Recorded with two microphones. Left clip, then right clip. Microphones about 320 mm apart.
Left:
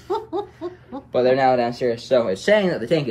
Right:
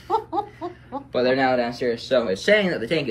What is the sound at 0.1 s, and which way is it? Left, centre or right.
Laughter, centre.